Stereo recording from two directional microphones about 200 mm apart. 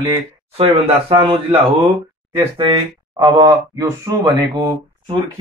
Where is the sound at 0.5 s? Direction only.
30° right (ahead or behind).